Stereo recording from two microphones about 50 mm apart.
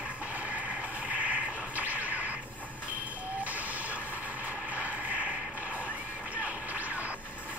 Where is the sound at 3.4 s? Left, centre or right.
Right.